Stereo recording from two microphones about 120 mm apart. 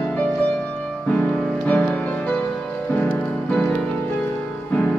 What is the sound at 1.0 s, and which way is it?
Music, 10° left (ahead or behind).